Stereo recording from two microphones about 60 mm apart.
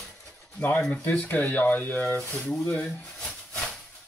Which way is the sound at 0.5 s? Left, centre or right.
Left.